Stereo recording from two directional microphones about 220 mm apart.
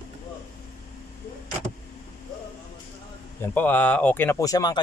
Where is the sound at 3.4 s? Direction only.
10° left (ahead or behind).